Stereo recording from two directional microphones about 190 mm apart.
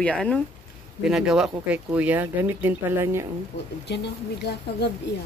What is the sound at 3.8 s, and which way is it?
Speech, 60° left (ahead or behind).